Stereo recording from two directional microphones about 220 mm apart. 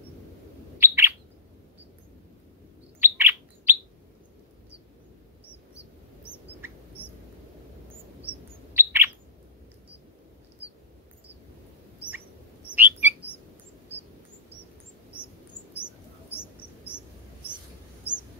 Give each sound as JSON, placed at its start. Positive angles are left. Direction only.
{"t": 0.7, "sound": "bird", "side_deg": -10}
{"t": 3.0, "sound": "bird", "side_deg": -10}
{"t": 8.2, "sound": "chirp", "side_deg": -10}
{"t": 12.7, "sound": "bird", "side_deg": -10}
{"t": 15.8, "sound": "a sound", "side_deg": 10}